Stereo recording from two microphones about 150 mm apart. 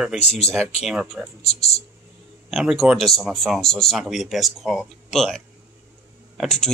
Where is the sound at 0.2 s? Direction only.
45° left (ahead or behind).